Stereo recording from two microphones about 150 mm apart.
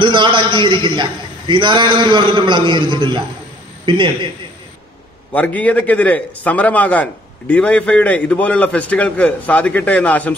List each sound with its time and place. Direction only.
0.0 s a man's voice: 35° right (ahead or behind)
5.3 s a man's voice: 10° left (ahead or behind)